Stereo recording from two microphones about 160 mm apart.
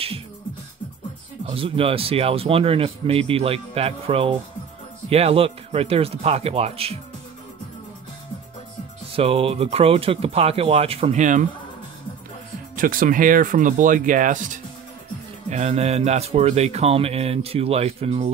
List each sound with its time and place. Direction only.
1.4 s speech: 35° right (ahead or behind)
9.1 s speech: 35° right (ahead or behind)
12.7 s speech: 60° right (ahead or behind); by 18.3 s 40° right (ahead or behind)